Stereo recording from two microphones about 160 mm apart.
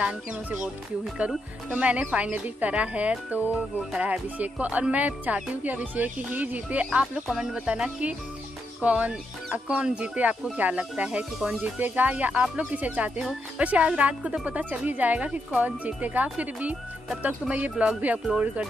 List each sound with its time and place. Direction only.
0.0 s speech: 5° right (ahead or behind)